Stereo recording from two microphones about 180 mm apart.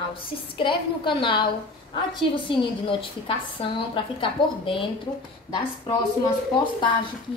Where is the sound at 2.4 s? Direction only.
30° left (ahead or behind).